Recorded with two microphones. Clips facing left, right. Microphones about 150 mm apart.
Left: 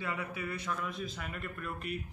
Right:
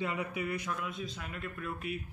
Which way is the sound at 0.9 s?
Centre (ahead or behind).